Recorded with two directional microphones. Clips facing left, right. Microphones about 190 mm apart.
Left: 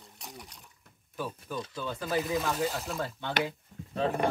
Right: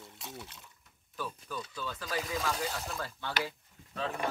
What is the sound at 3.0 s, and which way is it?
Speech, 25° left (ahead or behind).